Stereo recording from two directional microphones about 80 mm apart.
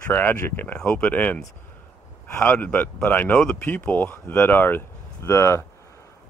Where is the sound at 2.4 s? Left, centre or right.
Left.